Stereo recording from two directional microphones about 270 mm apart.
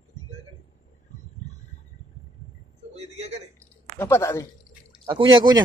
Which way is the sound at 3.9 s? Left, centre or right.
Centre.